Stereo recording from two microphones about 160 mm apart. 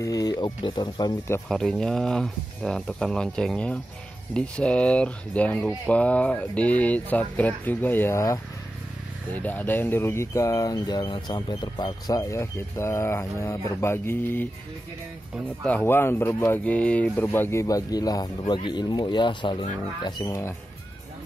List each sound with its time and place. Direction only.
0.0 s speech: 25° left (ahead or behind)
1.5 s speech: 5° left (ahead or behind)
15.6 s speech: 10° left (ahead or behind)